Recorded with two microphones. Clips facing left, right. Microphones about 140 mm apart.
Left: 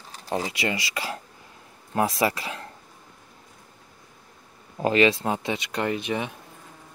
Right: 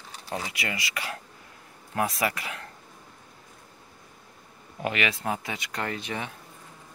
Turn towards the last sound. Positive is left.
turn(degrees=20)  # may be behind; listen again after turning